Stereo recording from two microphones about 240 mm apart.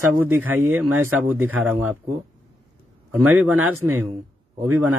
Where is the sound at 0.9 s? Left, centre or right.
Right.